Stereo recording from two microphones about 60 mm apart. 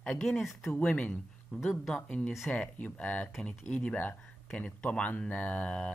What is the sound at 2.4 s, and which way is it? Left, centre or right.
Speech, left.